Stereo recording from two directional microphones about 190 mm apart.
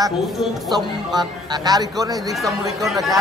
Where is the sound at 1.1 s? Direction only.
20° right (ahead or behind).